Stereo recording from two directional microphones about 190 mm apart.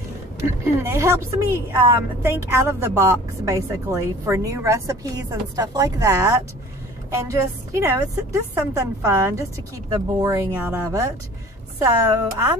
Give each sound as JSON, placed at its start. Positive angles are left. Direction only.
{"t": 0.4, "sound": "a woman's voice", "side_deg": -15}